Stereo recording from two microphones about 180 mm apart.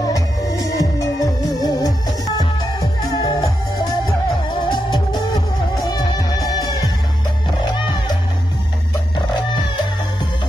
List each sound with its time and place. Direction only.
0.0 s music: 20° left (ahead or behind)